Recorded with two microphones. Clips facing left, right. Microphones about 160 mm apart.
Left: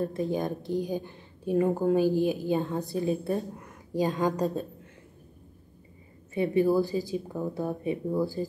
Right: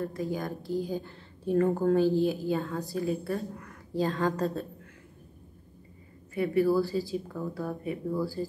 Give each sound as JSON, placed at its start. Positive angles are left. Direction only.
{"t": 0.0, "sound": "a woman's voice", "side_deg": 25}
{"t": 6.3, "sound": "speech", "side_deg": 20}